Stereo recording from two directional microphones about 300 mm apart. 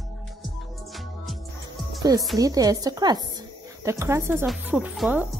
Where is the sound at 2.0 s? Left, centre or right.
Centre.